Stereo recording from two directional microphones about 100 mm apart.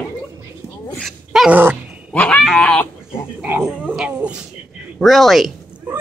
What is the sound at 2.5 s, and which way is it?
Goat, 10° left (ahead or behind).